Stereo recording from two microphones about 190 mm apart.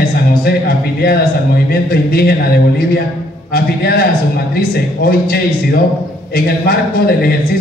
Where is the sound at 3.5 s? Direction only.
55° left (ahead or behind).